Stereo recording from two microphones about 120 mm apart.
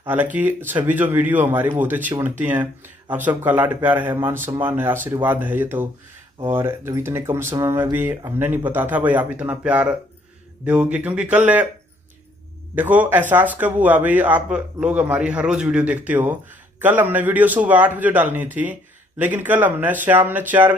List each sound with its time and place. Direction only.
0.0 s a man's voice: 15° right (ahead or behind)
12.7 s a man's voice: 15° right (ahead or behind)